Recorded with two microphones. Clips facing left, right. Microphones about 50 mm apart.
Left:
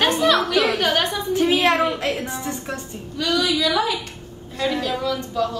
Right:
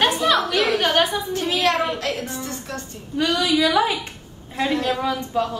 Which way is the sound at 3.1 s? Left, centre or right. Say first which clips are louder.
Right 2 dB; right.